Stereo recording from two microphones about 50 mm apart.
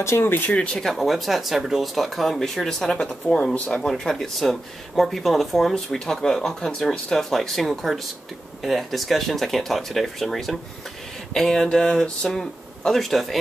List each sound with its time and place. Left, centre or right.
0.2 s speech: left
0.7 s speech: centre
3.5 s speech: left
3.8 s speech: centre